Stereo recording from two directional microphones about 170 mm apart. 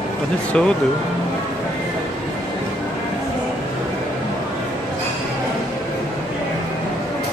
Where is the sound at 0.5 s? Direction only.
5° left (ahead or behind).